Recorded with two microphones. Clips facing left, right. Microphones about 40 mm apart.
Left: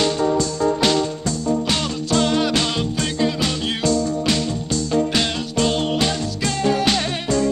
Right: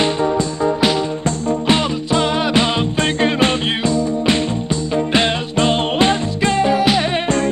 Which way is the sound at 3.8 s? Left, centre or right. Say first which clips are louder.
Right 2 dB; right.